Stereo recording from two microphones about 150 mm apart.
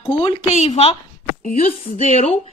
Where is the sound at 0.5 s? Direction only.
45° left (ahead or behind).